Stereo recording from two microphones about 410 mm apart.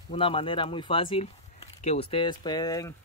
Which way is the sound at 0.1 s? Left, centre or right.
Centre.